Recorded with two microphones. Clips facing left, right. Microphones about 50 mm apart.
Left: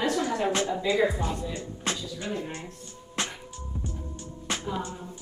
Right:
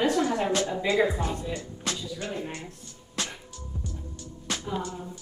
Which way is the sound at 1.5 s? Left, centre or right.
Left.